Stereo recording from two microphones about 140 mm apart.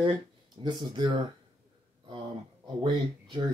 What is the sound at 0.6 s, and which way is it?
Speech, 35° right (ahead or behind).